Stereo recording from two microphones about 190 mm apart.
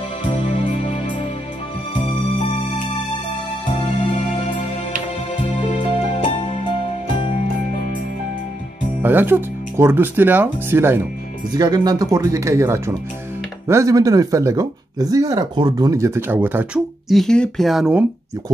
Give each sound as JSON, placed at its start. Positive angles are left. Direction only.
{"t": 0.2, "sound": "music", "side_deg": 30}
{"t": 3.6, "sound": "music", "side_deg": 25}
{"t": 5.3, "sound": "music", "side_deg": 25}
{"t": 9.0, "sound": "speech", "side_deg": -10}
{"t": 17.1, "sound": "speech", "side_deg": 0}